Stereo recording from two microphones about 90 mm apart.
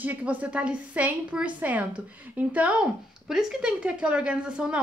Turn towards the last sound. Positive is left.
turn(degrees=-10)  # may be behind; listen again after turning